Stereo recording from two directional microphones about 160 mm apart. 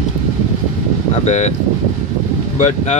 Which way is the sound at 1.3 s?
45° left (ahead or behind).